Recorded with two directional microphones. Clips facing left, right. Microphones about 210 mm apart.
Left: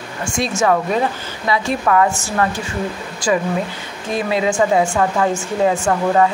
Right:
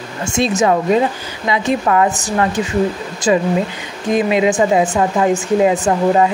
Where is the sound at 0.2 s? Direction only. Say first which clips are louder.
Right 4 dB; 25° right (ahead or behind).